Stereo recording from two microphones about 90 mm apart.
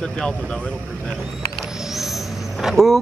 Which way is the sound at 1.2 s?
5° right (ahead or behind).